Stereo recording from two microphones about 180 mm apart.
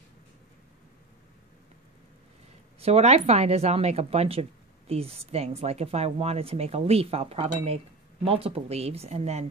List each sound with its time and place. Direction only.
2.8 s speech: 35° right (ahead or behind)